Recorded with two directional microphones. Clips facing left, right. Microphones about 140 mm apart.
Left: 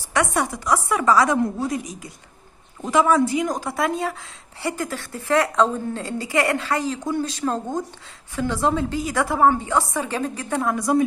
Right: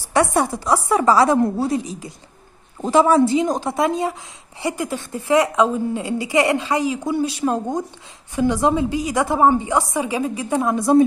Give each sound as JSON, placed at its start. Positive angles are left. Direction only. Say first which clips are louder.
{"t": 0.1, "sound": "a woman's voice", "louder": "right 4 dB", "side_deg": -30}